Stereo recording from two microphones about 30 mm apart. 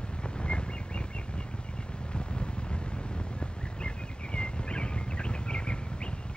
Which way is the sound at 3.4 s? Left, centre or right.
Left.